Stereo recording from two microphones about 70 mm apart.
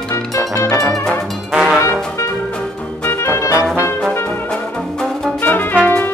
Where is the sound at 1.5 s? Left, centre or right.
Centre.